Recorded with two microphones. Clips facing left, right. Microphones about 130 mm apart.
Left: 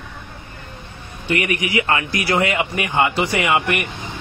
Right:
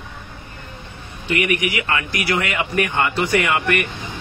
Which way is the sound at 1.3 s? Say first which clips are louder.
Even; 30° left (ahead or behind).